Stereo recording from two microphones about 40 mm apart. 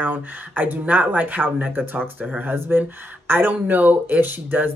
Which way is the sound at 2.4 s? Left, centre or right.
Right.